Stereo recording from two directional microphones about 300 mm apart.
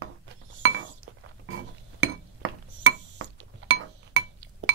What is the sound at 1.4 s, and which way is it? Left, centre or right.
Glass, right.